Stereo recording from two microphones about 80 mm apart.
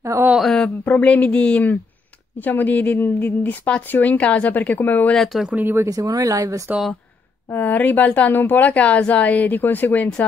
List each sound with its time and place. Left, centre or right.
0.0 s a sound: right
0.4 s a sound: centre
0.8 s speech: centre
5.1 s speech: centre
5.8 s speech: right
7.5 s speech: left